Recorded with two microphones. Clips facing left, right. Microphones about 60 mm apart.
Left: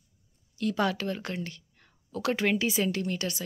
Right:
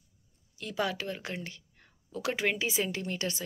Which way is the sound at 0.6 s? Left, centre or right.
Centre.